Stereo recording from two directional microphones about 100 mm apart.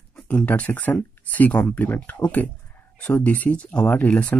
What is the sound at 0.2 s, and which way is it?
Speech, 15° left (ahead or behind).